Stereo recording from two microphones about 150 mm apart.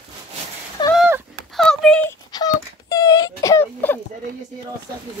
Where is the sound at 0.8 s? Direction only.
30° left (ahead or behind).